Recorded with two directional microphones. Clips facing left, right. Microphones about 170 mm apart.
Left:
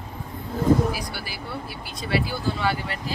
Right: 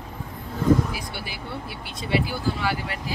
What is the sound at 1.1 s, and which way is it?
Speech, 20° right (ahead or behind).